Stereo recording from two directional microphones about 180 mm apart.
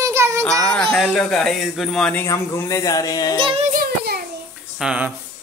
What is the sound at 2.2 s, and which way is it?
Speech, 15° left (ahead or behind).